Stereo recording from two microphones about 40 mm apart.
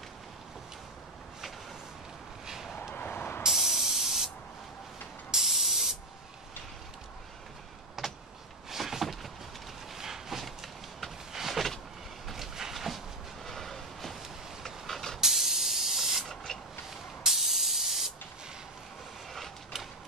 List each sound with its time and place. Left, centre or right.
2.4 s vehicle: centre
2.9 s vehicle: left
3.4 s spray: centre
5.3 s spray: centre
8.0 s vehicle: centre
8.6 s a sound: centre
10.4 s power windows: centre
12.3 s vehicle: centre
13.5 s a sound: centre
14.6 s vehicle: centre
15.1 s spray: centre
16.5 s vehicle: centre
16.9 s spray: centre